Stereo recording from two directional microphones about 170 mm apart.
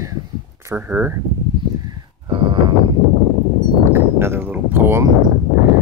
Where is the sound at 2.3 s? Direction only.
30° right (ahead or behind).